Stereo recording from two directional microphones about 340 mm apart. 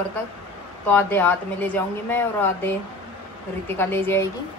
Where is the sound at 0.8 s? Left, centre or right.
Centre.